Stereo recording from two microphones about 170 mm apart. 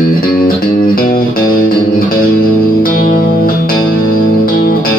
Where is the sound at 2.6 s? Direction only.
55° left (ahead or behind).